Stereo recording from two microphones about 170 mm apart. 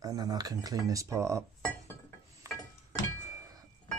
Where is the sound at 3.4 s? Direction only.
20° right (ahead or behind).